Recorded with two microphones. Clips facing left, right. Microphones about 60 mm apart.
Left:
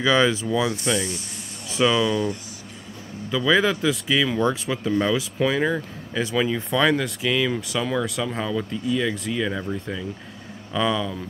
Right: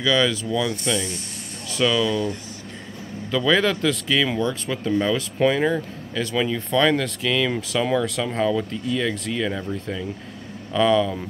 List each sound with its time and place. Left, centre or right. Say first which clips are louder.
0.0 s speech: left 1 dB; left; by 5.2 s centre
5.4 s speech: right 3 dB; centre
5.7 s speech: right 2 dB; centre
10.7 s speech: right 5 dB; centre